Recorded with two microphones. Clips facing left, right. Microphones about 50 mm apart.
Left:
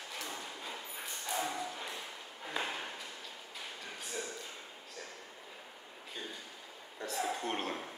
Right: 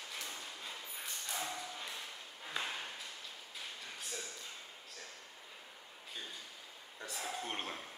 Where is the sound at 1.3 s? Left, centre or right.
Centre.